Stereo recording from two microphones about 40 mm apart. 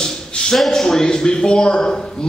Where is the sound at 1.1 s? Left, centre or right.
Left.